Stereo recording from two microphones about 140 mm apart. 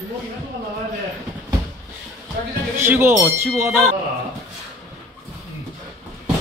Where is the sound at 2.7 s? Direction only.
15° right (ahead or behind).